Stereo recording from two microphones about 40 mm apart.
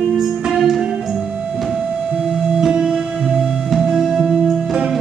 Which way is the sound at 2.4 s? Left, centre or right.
Centre.